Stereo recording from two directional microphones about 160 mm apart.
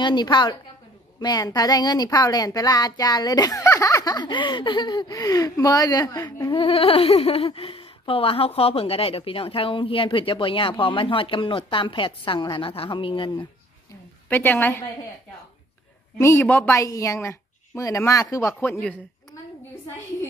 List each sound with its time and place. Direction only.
0.0 s speech: 25° left (ahead or behind)
14.3 s a woman's voice: 10° left (ahead or behind)
16.2 s speech: 15° left (ahead or behind)
18.6 s a woman's voice: 10° left (ahead or behind)